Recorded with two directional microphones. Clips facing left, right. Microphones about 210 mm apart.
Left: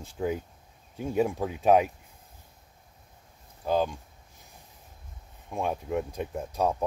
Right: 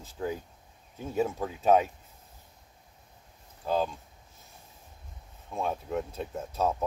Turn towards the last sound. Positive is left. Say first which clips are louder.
# left 2 dB
turn(degrees=15)  # may be behind; listen again after turning